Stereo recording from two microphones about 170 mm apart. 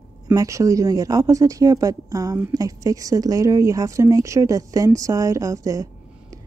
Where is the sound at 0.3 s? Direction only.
20° right (ahead or behind).